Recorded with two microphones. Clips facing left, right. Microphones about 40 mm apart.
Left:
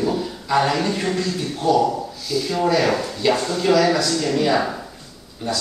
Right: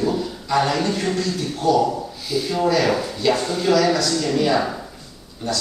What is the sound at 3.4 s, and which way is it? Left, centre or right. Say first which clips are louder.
Speech: left 1 dB; centre.